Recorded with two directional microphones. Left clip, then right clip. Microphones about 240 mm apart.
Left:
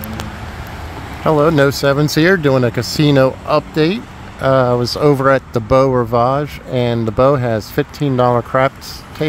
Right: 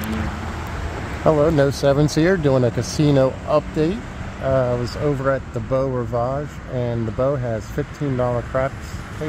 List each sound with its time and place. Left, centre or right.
1.2 s speech: centre